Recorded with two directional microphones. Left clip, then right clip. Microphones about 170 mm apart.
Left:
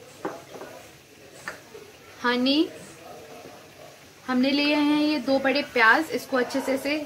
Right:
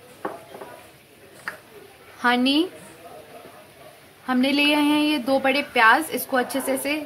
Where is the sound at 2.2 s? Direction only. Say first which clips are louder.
Right 3 dB; 50° right (ahead or behind).